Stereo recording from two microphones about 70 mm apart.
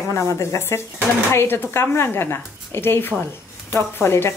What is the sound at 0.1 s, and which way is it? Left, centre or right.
A woman's voice, left.